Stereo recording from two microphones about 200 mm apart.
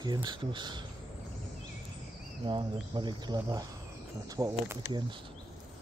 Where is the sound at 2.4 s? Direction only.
25° right (ahead or behind).